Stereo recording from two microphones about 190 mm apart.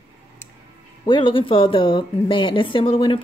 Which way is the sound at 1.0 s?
25° left (ahead or behind).